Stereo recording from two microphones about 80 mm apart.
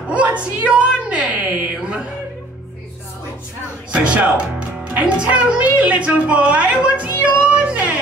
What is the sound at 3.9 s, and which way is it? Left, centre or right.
A woman's voice, centre.